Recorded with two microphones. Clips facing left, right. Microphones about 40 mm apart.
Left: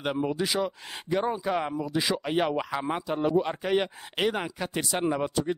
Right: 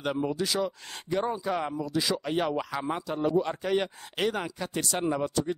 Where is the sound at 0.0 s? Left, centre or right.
Centre.